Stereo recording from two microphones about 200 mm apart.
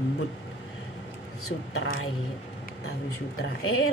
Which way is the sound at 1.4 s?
85° left.